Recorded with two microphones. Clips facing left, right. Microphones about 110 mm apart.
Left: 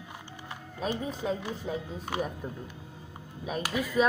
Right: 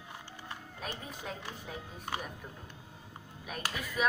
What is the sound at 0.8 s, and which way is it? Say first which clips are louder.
Speech: left 11 dB; 15° left (ahead or behind).